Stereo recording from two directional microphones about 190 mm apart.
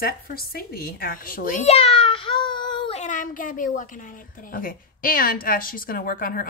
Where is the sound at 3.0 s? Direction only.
45° left (ahead or behind).